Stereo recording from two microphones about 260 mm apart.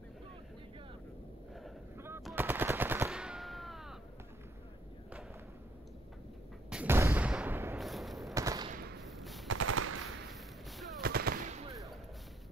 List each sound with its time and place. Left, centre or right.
1.5 s machine gun: centre
6.7 s artillery fire: centre
8.4 s fusillade: centre
9.2 s machine gun: centre
9.5 s machine gun: right
11.0 s machine gun: right